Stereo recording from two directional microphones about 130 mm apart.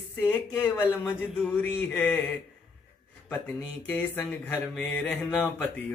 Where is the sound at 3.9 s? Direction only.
15° left (ahead or behind).